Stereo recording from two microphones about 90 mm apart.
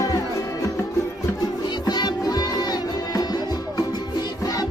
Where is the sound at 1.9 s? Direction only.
50° left (ahead or behind).